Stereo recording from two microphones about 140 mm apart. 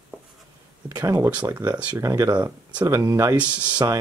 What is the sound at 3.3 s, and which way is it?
Speech, 10° right (ahead or behind).